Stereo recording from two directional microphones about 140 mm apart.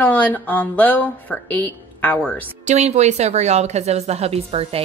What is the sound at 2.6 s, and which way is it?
Speech, 55° right (ahead or behind).